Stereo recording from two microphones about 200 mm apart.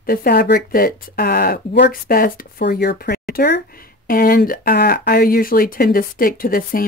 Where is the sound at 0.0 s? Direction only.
50° left (ahead or behind).